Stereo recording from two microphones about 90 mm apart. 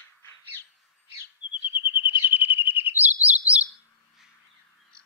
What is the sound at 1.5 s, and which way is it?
Bird, 70° left (ahead or behind).